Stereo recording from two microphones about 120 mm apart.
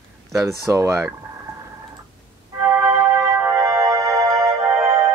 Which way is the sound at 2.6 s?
25° right (ahead or behind).